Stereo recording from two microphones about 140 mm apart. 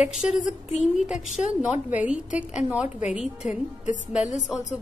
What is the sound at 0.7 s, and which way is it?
Speech, 55° left (ahead or behind).